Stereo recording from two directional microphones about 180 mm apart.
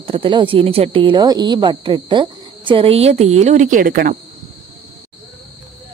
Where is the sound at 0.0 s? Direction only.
30° right (ahead or behind); by 4.1 s 55° right (ahead or behind).